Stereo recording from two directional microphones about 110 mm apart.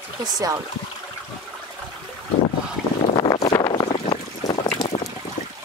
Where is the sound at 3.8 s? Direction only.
70° left (ahead or behind).